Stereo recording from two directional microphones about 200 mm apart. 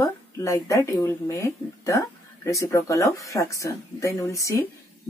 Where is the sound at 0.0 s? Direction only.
15° left (ahead or behind).